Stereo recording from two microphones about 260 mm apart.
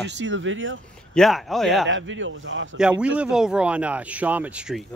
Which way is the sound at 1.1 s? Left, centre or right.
Centre.